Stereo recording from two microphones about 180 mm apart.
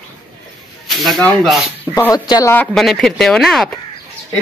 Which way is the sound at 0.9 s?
Centre (ahead or behind).